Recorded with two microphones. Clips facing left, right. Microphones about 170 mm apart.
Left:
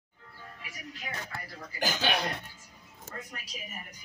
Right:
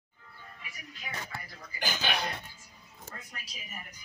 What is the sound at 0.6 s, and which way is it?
Music, 80° left.